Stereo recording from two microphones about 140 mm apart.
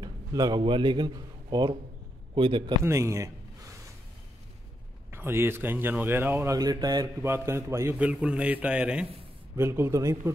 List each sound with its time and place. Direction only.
0.0 s a man's voice: 30° right (ahead or behind)
2.8 s a sound: 20° right (ahead or behind)
5.1 s speech: 15° right (ahead or behind)
8.0 s speech: 5° right (ahead or behind)
9.6 s speech: 20° right (ahead or behind)